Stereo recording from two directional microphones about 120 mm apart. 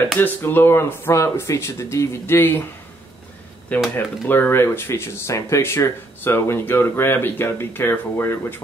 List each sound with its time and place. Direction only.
0.2 s speech: 15° left (ahead or behind)
3.9 s speech: 15° left (ahead or behind)